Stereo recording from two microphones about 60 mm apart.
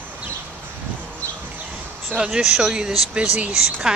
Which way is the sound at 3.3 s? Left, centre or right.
Right.